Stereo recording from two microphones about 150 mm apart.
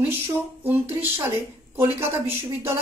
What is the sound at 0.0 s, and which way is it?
Speech, 15° right (ahead or behind).